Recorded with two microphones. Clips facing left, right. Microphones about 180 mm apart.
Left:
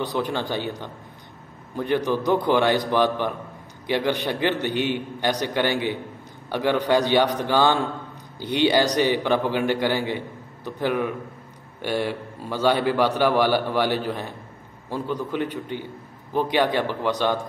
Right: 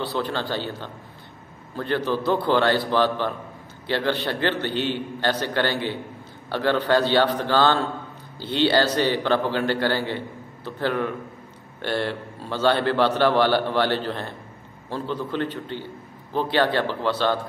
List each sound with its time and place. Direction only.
0.0 s a man's voice: 15° left (ahead or behind)